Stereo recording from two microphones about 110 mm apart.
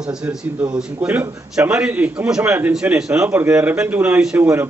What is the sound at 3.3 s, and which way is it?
A man's voice, 15° right (ahead or behind).